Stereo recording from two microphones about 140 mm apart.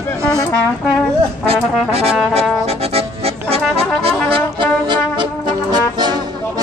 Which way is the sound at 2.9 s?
45° right (ahead or behind).